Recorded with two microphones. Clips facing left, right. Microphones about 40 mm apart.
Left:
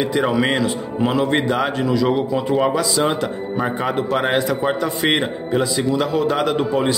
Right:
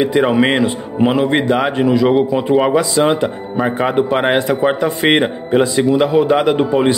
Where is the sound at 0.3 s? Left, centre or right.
Right.